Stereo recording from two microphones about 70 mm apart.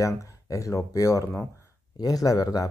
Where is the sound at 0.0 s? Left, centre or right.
Left.